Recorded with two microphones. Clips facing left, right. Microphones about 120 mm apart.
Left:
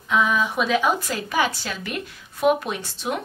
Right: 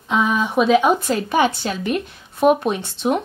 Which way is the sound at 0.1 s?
25° right (ahead or behind).